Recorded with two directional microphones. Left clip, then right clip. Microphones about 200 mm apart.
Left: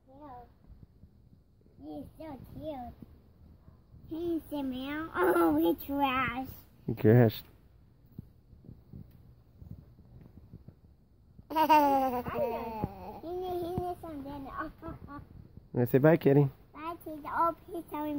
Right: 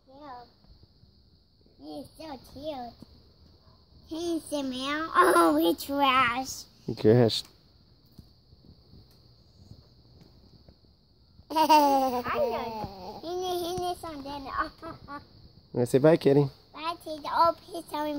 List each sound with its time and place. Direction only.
2.2 s a child's voice: 45° right (ahead or behind)
4.1 s a child's voice: 20° right (ahead or behind)
11.4 s a sound: 25° right (ahead or behind)
14.4 s speech: 40° right (ahead or behind)
15.7 s speech: 5° right (ahead or behind)
17.2 s a child's voice: 70° right (ahead or behind)